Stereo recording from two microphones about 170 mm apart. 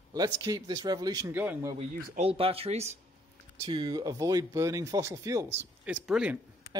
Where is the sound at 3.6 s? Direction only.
25° right (ahead or behind).